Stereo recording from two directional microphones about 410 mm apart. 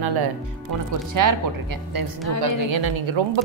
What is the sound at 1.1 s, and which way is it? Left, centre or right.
A woman's voice, right.